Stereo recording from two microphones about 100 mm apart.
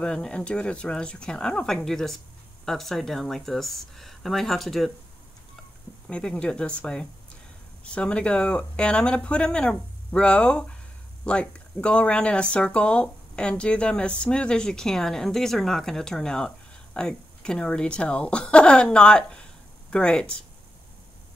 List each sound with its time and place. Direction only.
0.0 s speech: 10° left (ahead or behind)
6.0 s speech: 10° left (ahead or behind)